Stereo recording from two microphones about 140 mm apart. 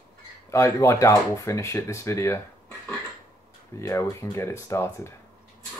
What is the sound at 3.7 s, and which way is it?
Speech, 20° left (ahead or behind).